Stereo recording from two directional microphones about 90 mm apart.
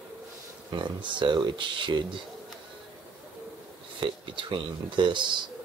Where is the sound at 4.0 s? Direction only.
65° right (ahead or behind).